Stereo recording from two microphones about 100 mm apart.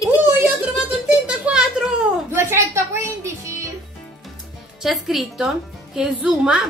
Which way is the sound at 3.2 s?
30° right (ahead or behind).